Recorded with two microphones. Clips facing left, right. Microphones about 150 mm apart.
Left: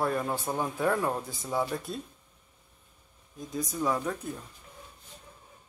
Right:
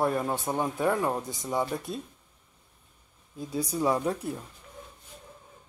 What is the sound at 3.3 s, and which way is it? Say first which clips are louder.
Speech: right 3 dB; 30° right (ahead or behind).